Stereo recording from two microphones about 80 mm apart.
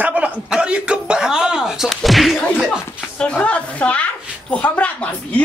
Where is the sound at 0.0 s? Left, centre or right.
Centre.